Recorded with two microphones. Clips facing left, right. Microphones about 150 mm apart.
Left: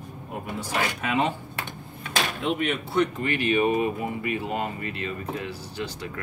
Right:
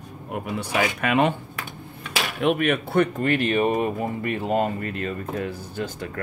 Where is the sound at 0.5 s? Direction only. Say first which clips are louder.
Right 4 dB; 65° right (ahead or behind).